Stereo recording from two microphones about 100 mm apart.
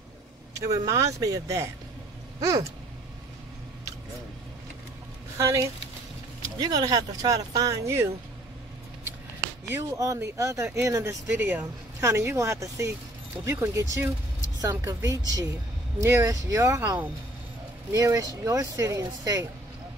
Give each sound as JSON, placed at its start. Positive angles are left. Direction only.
{"t": 0.6, "sound": "speech", "side_deg": -35}
{"t": 5.4, "sound": "speech", "side_deg": -30}
{"t": 6.6, "sound": "speech", "side_deg": -40}
{"t": 9.7, "sound": "speech", "side_deg": -30}
{"t": 11.3, "sound": "speech", "side_deg": -15}
{"t": 12.0, "sound": "speech", "side_deg": -30}